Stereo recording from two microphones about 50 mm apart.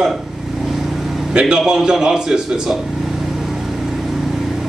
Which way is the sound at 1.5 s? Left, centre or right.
Centre.